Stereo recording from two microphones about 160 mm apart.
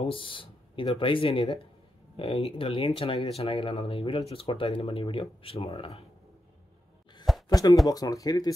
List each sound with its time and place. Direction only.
0.0 s speech: 35° left (ahead or behind)
7.4 s a sound: 20° left (ahead or behind)
7.9 s speech: 25° left (ahead or behind)